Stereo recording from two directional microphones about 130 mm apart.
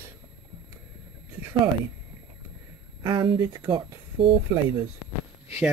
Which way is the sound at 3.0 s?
35° right (ahead or behind).